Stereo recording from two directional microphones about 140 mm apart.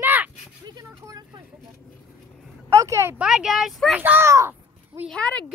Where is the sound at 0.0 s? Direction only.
15° right (ahead or behind).